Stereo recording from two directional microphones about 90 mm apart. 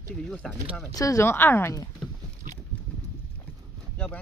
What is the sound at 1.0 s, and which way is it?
Speech, 40° left (ahead or behind).